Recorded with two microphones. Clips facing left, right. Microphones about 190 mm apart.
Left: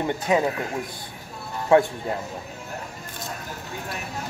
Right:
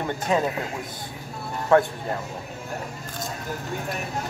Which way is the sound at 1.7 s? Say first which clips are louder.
Left 1 dB; 15° left (ahead or behind).